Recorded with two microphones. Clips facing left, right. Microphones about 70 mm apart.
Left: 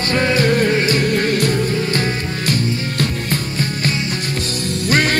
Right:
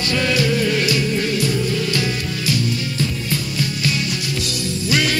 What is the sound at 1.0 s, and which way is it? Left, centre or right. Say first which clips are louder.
Music: left 3 dB; left.